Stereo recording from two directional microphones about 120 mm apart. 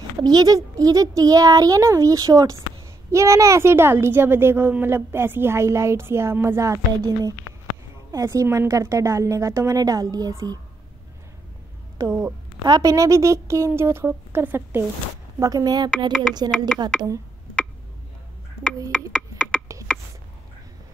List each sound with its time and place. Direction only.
0.2 s a child's voice: 35° right (ahead or behind)
12.0 s a child's voice: 20° right (ahead or behind)
15.3 s speech: 25° right (ahead or behind)
16.4 s speech: 5° left (ahead or behind)
19.1 s a sound: 5° left (ahead or behind)